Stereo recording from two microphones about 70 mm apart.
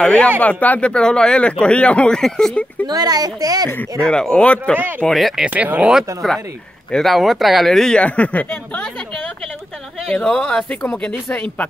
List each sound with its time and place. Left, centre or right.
0.0 s speech: centre
2.9 s speech: right
4.0 s speech: centre
5.0 s speech: centre
5.5 s speech: right
5.9 s speech: centre
8.0 s speech: centre
10.0 s speech: centre